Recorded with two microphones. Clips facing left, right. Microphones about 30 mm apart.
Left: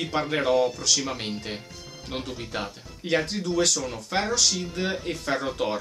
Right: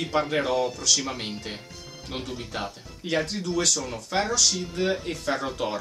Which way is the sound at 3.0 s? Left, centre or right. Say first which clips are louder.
Left 1 dB; left.